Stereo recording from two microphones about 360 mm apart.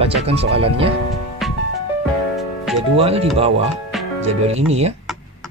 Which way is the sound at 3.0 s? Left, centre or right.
Centre.